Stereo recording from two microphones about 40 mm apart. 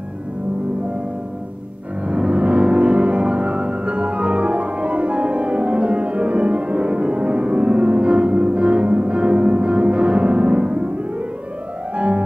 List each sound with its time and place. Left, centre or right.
2.0 s music: right
11.9 s music: right